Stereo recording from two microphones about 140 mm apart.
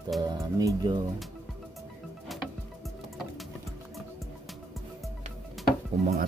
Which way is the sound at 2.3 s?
Centre (ahead or behind).